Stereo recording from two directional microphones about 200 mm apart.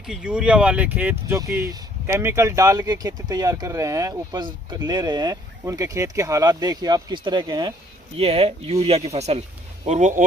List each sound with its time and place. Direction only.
0.0 s speech: 5° right (ahead or behind); by 10.2 s 35° right (ahead or behind)